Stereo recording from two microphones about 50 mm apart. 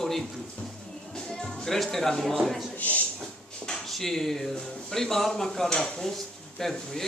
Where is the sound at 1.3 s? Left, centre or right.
Centre.